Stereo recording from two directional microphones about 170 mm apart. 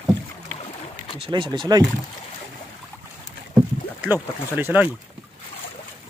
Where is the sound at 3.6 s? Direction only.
10° right (ahead or behind).